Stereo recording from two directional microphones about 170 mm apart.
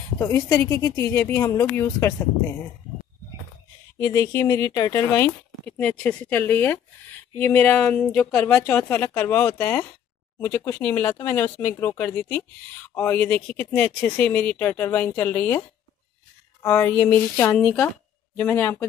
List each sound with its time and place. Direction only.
0.2 s speech: 20° left (ahead or behind)
4.0 s speech: 15° left (ahead or behind)
16.6 s speech: 15° left (ahead or behind)